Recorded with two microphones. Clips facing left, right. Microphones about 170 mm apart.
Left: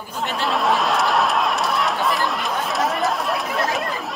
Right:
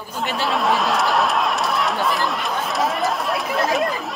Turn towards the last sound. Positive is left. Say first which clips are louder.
# right 3 dB
turn(degrees=0)  # may be behind; listen again after turning